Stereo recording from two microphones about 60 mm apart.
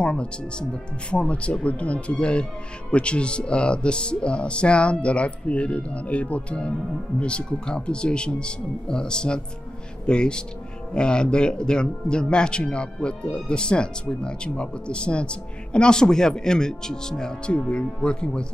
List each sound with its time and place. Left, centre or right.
0.0 s speech: centre